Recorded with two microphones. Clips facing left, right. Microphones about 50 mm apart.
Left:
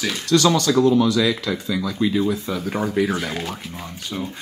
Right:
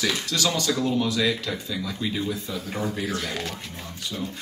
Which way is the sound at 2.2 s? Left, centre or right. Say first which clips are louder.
Left 7 dB; left.